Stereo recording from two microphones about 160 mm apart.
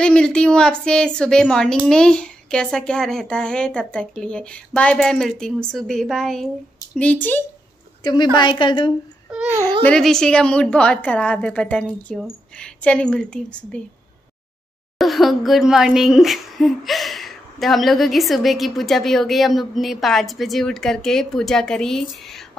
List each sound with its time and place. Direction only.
0.0 s a woman's voice: 5° left (ahead or behind)
8.0 s a woman's voice: 25° left (ahead or behind)
9.3 s a child's voice: 5° right (ahead or behind)
9.8 s a woman's voice: 5° left (ahead or behind)
15.0 s a woman's voice: centre (ahead or behind)